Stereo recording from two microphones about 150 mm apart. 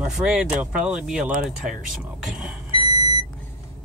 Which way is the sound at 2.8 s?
45° left (ahead or behind).